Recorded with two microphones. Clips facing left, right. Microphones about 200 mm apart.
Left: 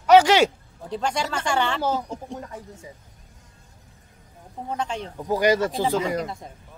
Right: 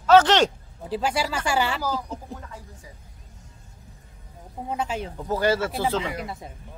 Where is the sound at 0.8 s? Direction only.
5° right (ahead or behind).